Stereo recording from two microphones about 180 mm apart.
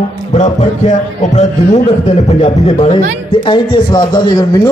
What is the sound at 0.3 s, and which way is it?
A man's voice, 40° left (ahead or behind).